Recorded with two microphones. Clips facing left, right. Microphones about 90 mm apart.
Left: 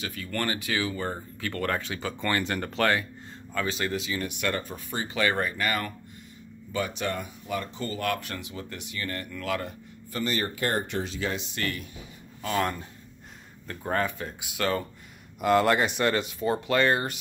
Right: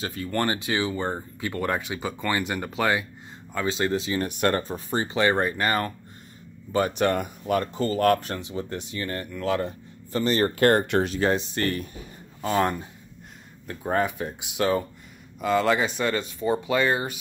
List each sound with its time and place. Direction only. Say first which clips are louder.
0.0 s speech: right 5 dB; 30° right (ahead or behind); by 3.1 s 10° right (ahead or behind)
3.5 s speech: right 4 dB; 25° right (ahead or behind)
6.7 s speech: right 7 dB; 50° right (ahead or behind)
7.8 s speech: right 10 dB; 40° right (ahead or behind)
10.4 s speech: right 9 dB; 60° right (ahead or behind); by 12.7 s 30° right (ahead or behind)
13.7 s speech: right 3 dB; 10° right (ahead or behind)
15.4 s speech: even; 5° left (ahead or behind)